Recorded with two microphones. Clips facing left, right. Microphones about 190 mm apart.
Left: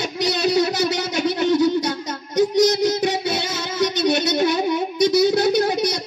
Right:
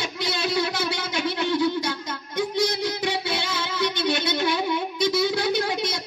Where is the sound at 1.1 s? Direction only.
45° left (ahead or behind).